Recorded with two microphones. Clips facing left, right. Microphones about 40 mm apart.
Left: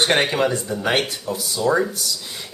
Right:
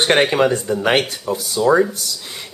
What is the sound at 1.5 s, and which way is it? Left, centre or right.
Speech, centre.